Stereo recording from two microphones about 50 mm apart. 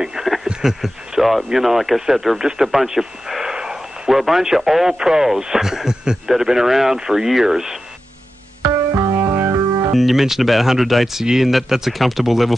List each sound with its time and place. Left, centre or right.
0.0 s a sound: centre
0.5 s a man's voice: centre
8.9 s keyboard: right
9.9 s speech: centre